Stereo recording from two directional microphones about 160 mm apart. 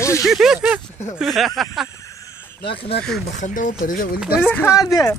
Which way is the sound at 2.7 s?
35° left (ahead or behind).